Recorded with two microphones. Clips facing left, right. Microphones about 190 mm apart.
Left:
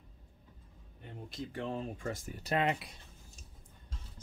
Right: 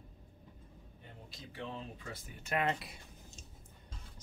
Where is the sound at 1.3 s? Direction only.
45° left (ahead or behind).